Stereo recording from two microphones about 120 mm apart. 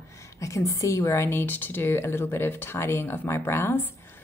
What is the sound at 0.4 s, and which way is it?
A woman's voice, 25° left (ahead or behind).